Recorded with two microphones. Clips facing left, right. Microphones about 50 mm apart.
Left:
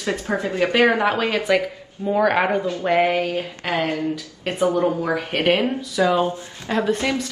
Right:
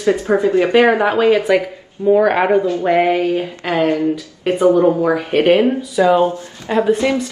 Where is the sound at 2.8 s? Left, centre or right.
Centre.